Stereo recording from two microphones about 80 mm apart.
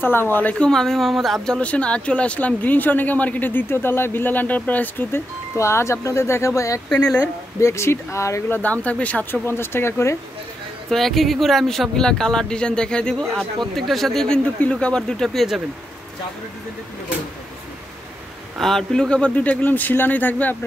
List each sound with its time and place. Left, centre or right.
0.0 s speech: left
0.7 s speech: centre; by 5.2 s left
5.6 s speech: left
6.9 s speech: centre
7.6 s speech: left
8.5 s speech: centre; by 10.1 s left
10.9 s speech: centre
18.6 s speech: centre; by 20.5 s left